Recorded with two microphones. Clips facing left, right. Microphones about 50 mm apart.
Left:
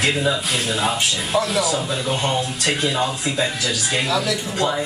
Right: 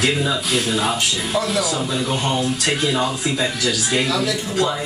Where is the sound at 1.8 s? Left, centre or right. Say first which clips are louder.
Right 1 dB; centre.